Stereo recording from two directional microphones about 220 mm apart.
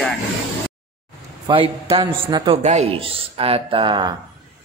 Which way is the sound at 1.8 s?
20° right (ahead or behind).